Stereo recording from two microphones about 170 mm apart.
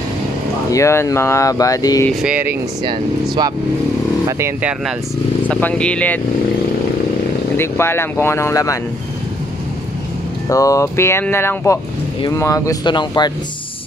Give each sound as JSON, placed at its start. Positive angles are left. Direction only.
{"t": 0.7, "sound": "speech", "side_deg": 15}
{"t": 2.2, "sound": "speech", "side_deg": -10}
{"t": 4.3, "sound": "speech", "side_deg": -15}
{"t": 5.5, "sound": "speech", "side_deg": 10}
{"t": 7.5, "sound": "speech", "side_deg": 15}
{"t": 10.5, "sound": "speech", "side_deg": 20}